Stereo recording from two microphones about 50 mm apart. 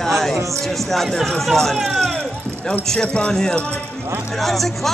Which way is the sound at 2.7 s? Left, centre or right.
Centre.